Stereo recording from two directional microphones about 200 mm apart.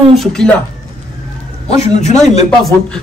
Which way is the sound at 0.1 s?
Centre (ahead or behind).